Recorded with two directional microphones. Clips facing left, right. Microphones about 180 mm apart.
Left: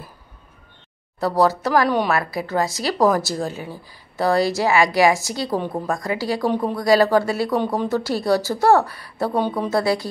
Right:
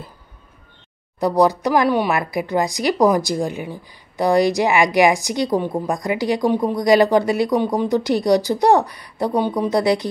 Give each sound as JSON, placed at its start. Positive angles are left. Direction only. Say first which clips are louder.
{"t": 1.2, "sound": "a woman's voice", "louder": "right 2 dB", "side_deg": -15}